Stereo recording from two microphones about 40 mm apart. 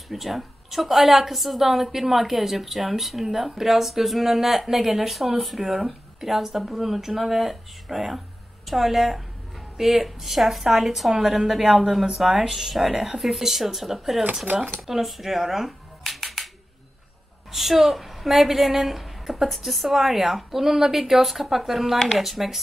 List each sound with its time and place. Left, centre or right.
0.1 s a woman's voice: centre
14.9 s a sound: centre
17.5 s a woman's voice: centre
21.9 s speech: centre
22.2 s a woman's voice: centre